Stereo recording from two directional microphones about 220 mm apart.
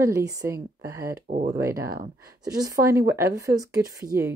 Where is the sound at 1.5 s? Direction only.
15° right (ahead or behind).